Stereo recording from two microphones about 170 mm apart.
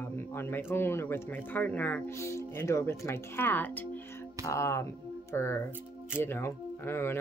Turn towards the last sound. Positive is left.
turn(degrees=15)  # may be behind; listen again after turning